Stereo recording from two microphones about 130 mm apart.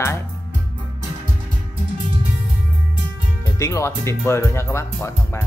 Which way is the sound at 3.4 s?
25° left (ahead or behind).